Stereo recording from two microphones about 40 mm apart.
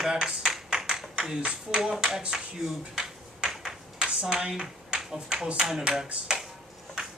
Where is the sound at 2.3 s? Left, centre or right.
Centre.